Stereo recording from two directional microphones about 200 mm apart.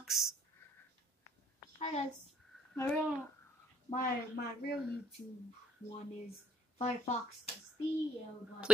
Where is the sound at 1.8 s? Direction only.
35° left (ahead or behind).